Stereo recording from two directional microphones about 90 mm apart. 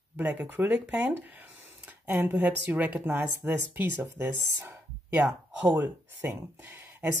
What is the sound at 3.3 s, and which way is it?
Speech, 30° right (ahead or behind).